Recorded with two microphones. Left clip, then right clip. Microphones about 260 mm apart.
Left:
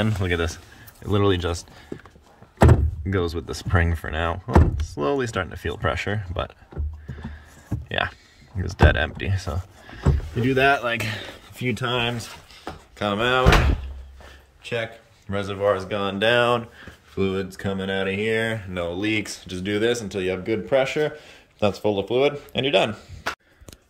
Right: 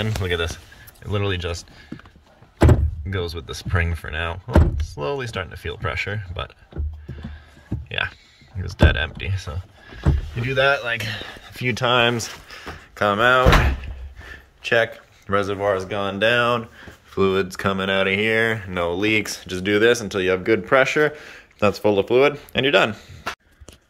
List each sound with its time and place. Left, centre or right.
0.0 s speech: centre
3.1 s speech: centre
7.9 s speech: centre
11.5 s speech: centre
12.9 s speech: centre
14.6 s speech: centre